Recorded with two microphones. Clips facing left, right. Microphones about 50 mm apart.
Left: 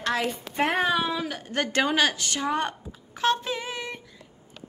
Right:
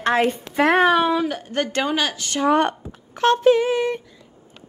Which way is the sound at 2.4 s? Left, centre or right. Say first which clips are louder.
Right 11 dB; right.